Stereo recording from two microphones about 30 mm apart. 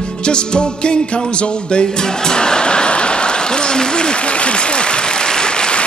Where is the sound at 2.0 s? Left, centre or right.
Left.